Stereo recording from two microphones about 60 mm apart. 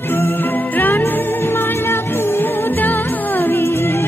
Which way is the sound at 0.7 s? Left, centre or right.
Left.